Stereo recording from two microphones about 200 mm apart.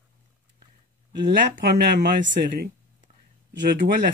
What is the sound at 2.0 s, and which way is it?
Speech, 55° right (ahead or behind).